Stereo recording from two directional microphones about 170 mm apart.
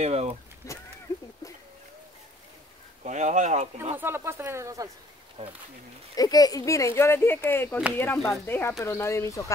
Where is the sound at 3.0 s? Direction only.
45° right (ahead or behind).